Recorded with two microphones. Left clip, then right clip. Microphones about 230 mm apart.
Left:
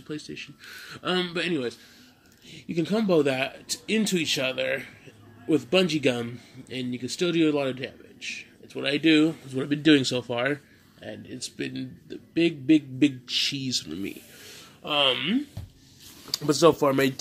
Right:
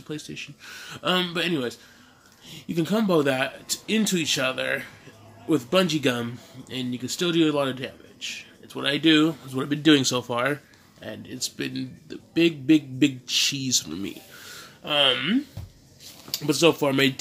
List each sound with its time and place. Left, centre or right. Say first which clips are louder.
0.1 s speech: right 1 dB; centre
16.8 s speech: right 1 dB; centre